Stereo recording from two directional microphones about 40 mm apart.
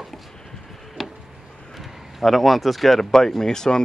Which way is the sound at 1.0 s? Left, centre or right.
Centre.